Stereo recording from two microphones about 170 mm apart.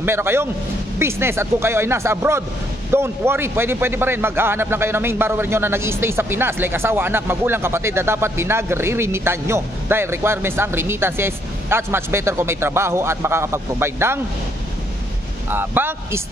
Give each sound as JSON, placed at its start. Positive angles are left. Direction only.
{"t": 0.0, "sound": "a man's voice", "side_deg": -15}
{"t": 15.5, "sound": "a man's voice", "side_deg": -10}